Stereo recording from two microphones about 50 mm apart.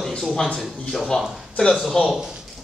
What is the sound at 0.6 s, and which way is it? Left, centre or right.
A man's voice, centre.